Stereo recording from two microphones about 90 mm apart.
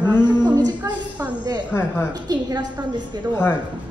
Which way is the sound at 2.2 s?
45° right (ahead or behind).